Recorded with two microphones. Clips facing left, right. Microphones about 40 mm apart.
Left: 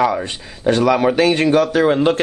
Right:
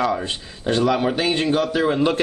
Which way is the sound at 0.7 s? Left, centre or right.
Left.